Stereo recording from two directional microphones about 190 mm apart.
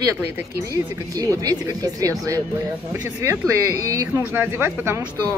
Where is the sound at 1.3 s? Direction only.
20° right (ahead or behind).